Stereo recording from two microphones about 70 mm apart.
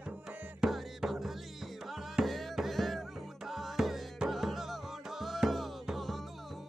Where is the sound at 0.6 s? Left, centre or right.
Centre.